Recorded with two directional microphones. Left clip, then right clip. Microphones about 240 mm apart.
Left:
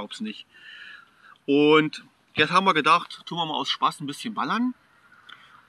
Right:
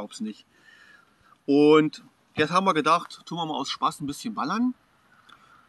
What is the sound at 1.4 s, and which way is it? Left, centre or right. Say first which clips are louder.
A man's voice: even; centre.